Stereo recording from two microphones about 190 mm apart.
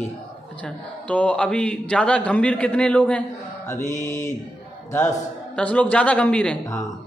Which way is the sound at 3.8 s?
40° left (ahead or behind).